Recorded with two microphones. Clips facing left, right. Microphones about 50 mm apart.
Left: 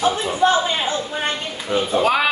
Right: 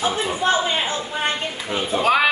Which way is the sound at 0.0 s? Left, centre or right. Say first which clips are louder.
Left 2 dB; right.